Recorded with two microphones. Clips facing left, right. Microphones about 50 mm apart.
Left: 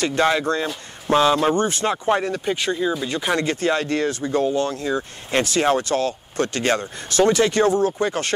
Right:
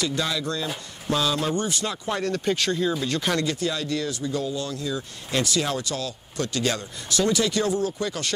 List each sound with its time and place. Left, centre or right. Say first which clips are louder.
0.0 s speech: left 7 dB; left
2.2 s speech: left 1 dB; centre
3.4 s speech: left 6 dB; left